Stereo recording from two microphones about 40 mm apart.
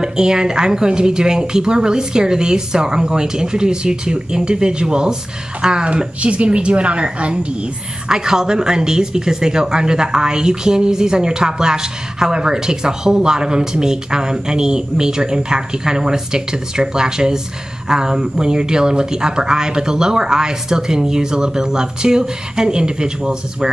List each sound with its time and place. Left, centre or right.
0.0 s speech: centre
8.1 s speech: centre